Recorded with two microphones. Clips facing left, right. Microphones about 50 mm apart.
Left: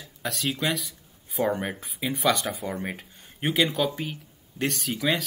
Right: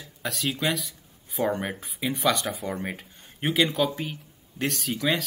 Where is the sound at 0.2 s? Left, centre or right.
Centre.